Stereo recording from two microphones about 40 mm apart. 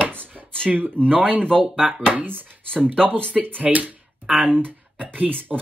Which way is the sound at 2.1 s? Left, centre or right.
Right.